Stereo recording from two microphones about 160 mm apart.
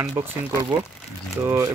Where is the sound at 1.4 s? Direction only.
20° right (ahead or behind).